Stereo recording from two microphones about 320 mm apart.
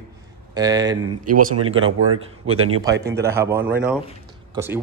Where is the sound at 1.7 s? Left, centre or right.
Right.